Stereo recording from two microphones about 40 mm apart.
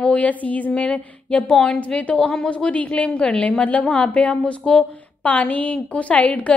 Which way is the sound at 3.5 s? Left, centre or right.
Left.